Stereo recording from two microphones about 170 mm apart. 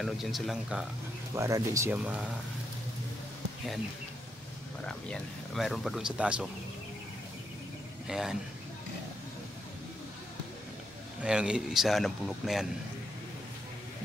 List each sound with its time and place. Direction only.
0.0 s speech: centre (ahead or behind)
1.3 s speech: 15° right (ahead or behind)
4.8 s speech: 5° left (ahead or behind)
8.1 s speech: 5° right (ahead or behind)
11.2 s speech: 5° right (ahead or behind)